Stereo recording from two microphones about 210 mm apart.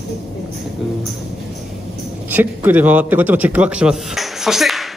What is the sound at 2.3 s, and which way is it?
A man's voice, 10° right (ahead or behind).